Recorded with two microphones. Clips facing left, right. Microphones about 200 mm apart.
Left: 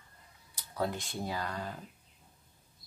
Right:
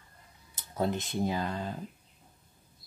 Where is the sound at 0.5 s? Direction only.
20° right (ahead or behind).